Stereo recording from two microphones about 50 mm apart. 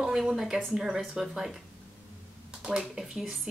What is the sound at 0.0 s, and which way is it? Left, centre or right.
A woman's voice, centre.